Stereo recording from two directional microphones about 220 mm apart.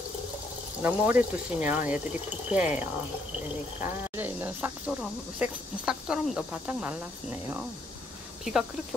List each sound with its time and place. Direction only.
0.8 s speech: 10° right (ahead or behind)